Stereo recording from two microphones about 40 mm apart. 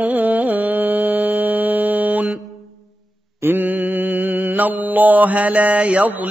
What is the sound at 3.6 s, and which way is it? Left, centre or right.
Mantra, right.